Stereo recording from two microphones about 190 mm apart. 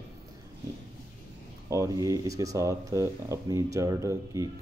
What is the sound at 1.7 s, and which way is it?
Speech, 15° right (ahead or behind).